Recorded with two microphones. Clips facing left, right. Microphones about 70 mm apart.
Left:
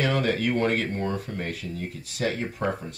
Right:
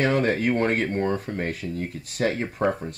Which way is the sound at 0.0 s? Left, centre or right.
Right.